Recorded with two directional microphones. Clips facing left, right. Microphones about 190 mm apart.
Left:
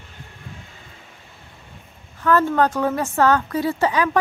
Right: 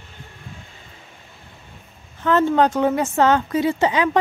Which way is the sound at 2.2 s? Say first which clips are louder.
Right 1 dB; 20° right (ahead or behind).